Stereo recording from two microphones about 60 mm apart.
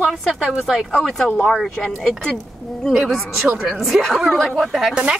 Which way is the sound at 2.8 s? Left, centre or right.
Centre.